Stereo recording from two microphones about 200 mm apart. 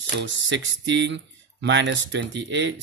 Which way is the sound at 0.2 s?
70° right (ahead or behind).